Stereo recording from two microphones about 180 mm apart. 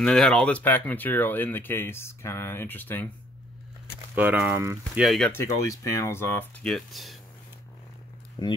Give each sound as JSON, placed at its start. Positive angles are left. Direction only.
{"t": 0.0, "sound": "speech", "side_deg": 5}
{"t": 4.1, "sound": "speech", "side_deg": -10}
{"t": 5.0, "sound": "speech", "side_deg": 0}
{"t": 5.3, "sound": "speech", "side_deg": 15}
{"t": 8.4, "sound": "speech", "side_deg": 25}